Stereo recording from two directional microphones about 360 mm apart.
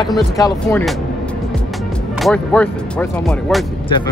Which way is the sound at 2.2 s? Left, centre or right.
Centre.